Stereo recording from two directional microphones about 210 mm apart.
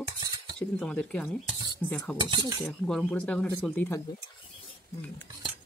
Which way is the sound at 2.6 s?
Centre (ahead or behind).